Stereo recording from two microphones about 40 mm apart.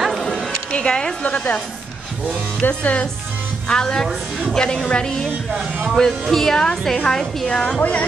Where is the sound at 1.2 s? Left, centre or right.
Left.